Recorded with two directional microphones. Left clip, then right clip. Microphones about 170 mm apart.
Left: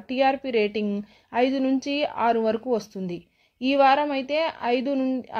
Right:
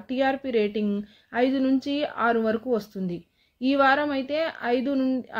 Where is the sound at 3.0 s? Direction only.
35° left (ahead or behind).